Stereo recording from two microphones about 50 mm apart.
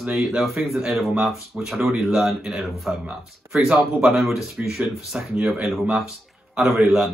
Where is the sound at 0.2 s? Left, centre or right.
Centre.